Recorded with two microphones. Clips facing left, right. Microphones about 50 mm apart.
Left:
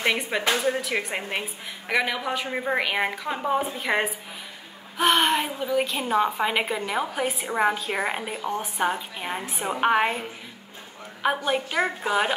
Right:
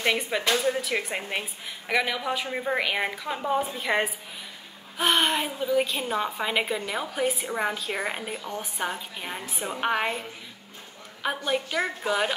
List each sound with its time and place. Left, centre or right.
0.0 s a woman's voice: centre
5.1 s a woman's voice: centre
11.2 s a woman's voice: centre